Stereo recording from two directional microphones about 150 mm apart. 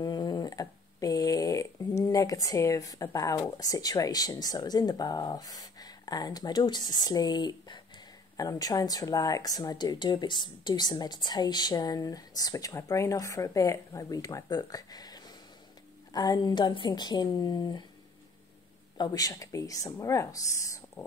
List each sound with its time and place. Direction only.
0.0 s speech: 25° left (ahead or behind)
18.9 s speech: 25° left (ahead or behind)